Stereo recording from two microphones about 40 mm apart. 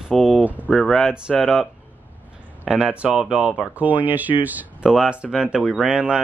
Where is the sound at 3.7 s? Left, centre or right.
Right.